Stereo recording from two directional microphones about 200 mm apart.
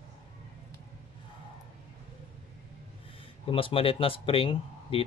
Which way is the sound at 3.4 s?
25° left (ahead or behind).